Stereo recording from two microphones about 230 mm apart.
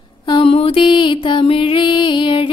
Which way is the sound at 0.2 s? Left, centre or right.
Left.